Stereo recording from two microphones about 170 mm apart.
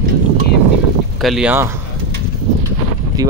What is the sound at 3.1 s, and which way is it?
Speech, 20° right (ahead or behind).